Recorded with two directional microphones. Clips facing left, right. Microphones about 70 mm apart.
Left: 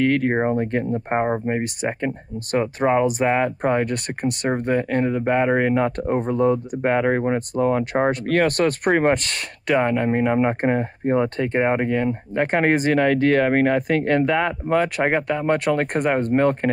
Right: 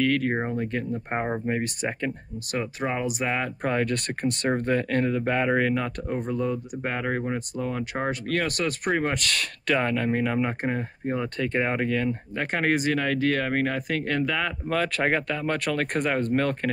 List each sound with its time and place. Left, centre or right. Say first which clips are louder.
0.0 s speech: left 5 dB; left
1.1 s speech: left 5 dB; left
2.5 s speech: left 9 dB; left
3.6 s speech: left 5 dB; left
9.2 s speech: right 1 dB; left
10.6 s speech: left 7 dB; left